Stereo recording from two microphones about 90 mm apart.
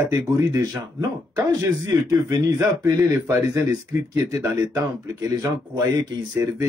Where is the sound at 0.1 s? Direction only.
35° right (ahead or behind).